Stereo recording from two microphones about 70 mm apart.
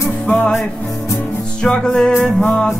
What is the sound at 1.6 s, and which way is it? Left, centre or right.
Music, centre.